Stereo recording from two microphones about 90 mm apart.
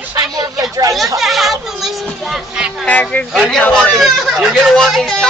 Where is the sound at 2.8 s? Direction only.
15° left (ahead or behind).